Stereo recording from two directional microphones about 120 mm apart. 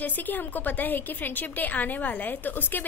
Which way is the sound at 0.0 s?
15° left (ahead or behind).